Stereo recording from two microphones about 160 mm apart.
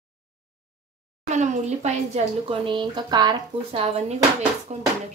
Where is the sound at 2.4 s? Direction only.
35° right (ahead or behind).